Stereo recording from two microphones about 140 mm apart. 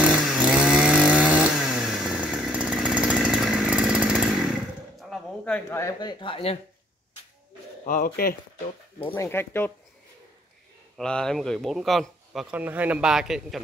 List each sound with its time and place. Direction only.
0.0 s chainsaw: 5° right (ahead or behind)
5.1 s a sound: 5° left (ahead or behind)
5.7 s speech: 20° left (ahead or behind); by 6.6 s 40° left (ahead or behind)
7.8 s speech: 85° left
9.1 s speech: 15° left (ahead or behind)
11.0 s a man's voice: 5° left (ahead or behind)